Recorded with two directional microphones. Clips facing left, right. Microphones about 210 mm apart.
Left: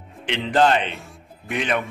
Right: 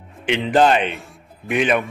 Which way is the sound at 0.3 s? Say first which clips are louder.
Right 3 dB; 15° right (ahead or behind).